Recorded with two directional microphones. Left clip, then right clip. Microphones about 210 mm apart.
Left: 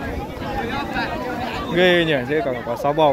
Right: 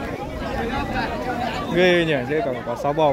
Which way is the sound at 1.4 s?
55° right (ahead or behind).